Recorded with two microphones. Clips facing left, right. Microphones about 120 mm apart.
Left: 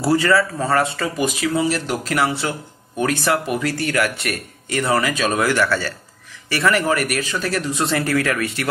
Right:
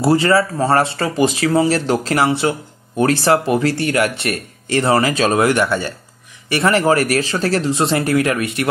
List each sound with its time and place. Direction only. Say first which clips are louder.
0.0 s speech: right 3 dB; 25° right (ahead or behind)